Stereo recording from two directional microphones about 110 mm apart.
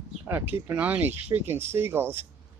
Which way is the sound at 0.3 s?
20° right (ahead or behind).